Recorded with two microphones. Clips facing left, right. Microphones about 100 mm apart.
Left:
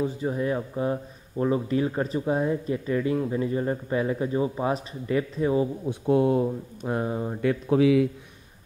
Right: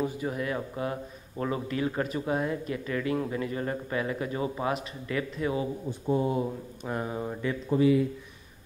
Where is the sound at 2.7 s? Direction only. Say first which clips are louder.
Left 4 dB; 25° left (ahead or behind).